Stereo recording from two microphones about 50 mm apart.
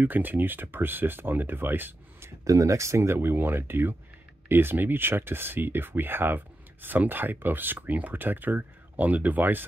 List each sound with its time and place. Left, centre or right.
0.0 s speech: right
2.5 s speech: right